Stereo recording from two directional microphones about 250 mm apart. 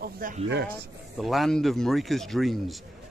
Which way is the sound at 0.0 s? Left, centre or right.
Right.